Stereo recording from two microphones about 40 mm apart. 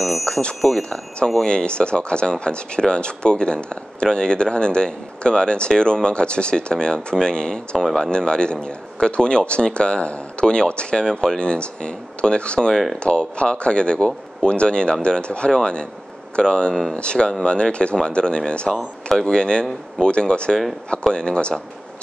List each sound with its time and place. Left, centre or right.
0.2 s speech: left
7.7 s speech: centre
8.1 s speech: left